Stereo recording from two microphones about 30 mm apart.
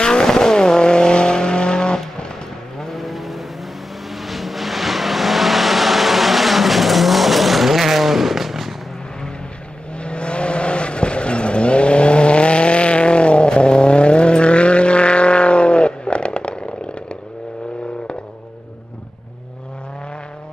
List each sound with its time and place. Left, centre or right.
0.0 s vehicle: left
2.8 s vehicle: centre
9.9 s vehicle: left